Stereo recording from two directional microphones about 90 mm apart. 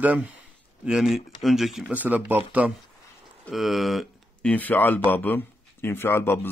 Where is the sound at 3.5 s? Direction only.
Centre (ahead or behind).